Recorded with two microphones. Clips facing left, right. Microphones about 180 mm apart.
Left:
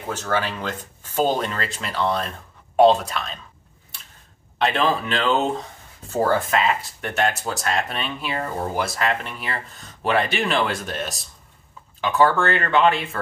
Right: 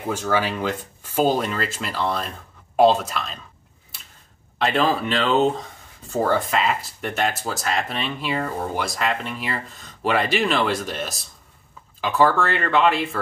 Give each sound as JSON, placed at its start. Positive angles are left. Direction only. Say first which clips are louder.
{"t": 0.1, "sound": "speech", "louder": "right 2 dB", "side_deg": -10}
{"t": 4.6, "sound": "speech", "louder": "right 1 dB", "side_deg": 0}